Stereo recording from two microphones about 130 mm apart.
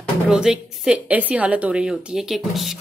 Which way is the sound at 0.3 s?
5° right (ahead or behind).